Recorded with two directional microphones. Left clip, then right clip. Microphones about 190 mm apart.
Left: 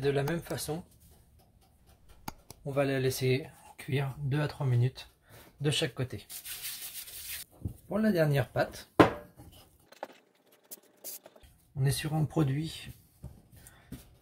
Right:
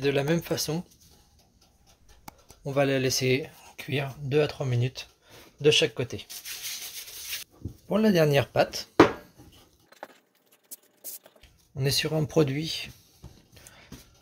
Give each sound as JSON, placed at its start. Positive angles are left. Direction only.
{"t": 0.0, "sound": "speech", "side_deg": -40}
{"t": 2.3, "sound": "a sound", "side_deg": 0}
{"t": 2.6, "sound": "speech", "side_deg": -35}
{"t": 7.9, "sound": "speech", "side_deg": -40}
{"t": 9.8, "sound": "keys jangling", "side_deg": 0}
{"t": 10.7, "sound": "a sound", "side_deg": 0}
{"t": 11.7, "sound": "speech", "side_deg": -40}